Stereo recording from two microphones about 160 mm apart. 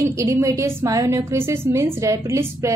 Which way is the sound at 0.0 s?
20° right (ahead or behind).